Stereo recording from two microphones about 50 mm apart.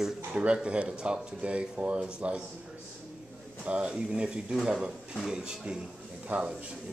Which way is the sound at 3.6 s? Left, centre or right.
Centre.